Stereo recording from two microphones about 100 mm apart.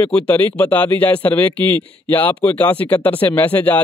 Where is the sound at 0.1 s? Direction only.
15° left (ahead or behind).